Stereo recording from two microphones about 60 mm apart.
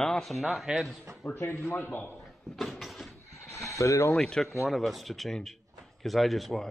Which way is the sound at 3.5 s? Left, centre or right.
Left.